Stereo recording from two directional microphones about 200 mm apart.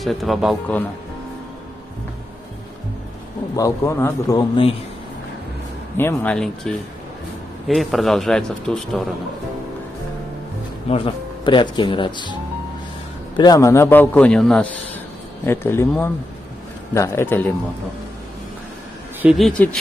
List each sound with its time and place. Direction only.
0.0 s speech: centre (ahead or behind)
3.5 s a man's voice: 15° left (ahead or behind)
5.9 s a man's voice: 10° left (ahead or behind)
10.9 s speech: 30° left (ahead or behind)
13.4 s a man's voice: 15° left (ahead or behind)
19.2 s speech: centre (ahead or behind)